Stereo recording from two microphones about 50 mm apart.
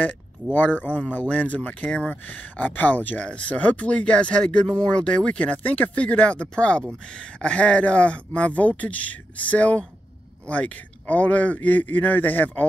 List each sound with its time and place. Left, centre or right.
0.0 s a man's voice: left